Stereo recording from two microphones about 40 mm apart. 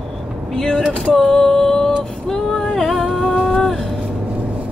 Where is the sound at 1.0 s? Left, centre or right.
Centre.